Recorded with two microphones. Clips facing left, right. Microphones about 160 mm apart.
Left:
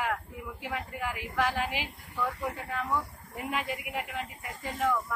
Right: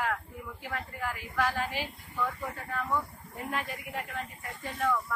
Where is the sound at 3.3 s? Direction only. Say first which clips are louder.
Left 2 dB; 10° left (ahead or behind).